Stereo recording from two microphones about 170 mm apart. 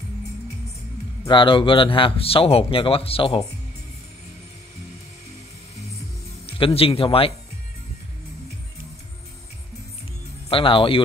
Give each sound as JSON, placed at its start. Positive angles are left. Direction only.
{"t": 1.3, "sound": "speech", "side_deg": 30}
{"t": 6.4, "sound": "speech", "side_deg": 35}
{"t": 10.5, "sound": "speech", "side_deg": 30}